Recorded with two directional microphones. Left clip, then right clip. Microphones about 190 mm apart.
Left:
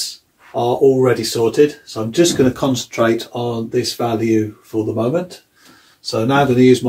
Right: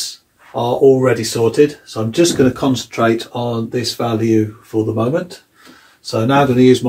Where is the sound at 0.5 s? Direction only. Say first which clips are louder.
Right 2 dB; 25° left (ahead or behind).